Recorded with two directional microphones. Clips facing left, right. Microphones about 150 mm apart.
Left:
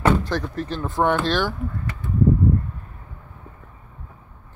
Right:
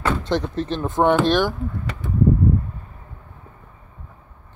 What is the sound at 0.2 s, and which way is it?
Speech, 20° right (ahead or behind).